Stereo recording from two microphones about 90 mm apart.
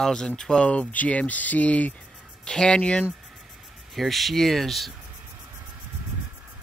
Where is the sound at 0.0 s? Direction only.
10° left (ahead or behind).